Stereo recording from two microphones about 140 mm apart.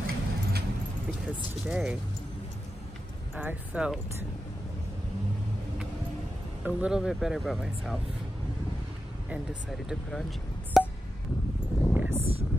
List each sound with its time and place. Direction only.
0.0 s keys jangling: 90° right
1.7 s speech: 5° right (ahead or behind)
3.3 s speech: 10° right (ahead or behind)
6.6 s speech: 5° right (ahead or behind)
9.3 s speech: 5° right (ahead or behind)
10.8 s a sound: centre (ahead or behind)
11.9 s a sound: 10° right (ahead or behind)